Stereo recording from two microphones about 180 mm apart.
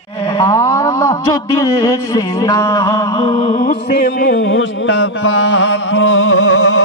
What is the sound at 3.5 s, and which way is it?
Music, 50° left (ahead or behind).